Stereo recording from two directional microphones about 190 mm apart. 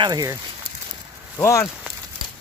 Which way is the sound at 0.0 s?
20° right (ahead or behind).